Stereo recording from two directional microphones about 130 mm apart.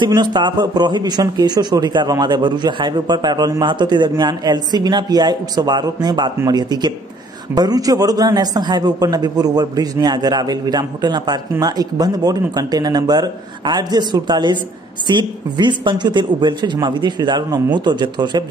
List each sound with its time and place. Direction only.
0.0 s a man's voice: 35° right (ahead or behind)